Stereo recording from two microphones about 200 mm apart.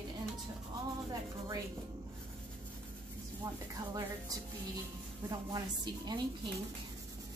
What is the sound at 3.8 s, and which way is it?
Speech, 20° right (ahead or behind).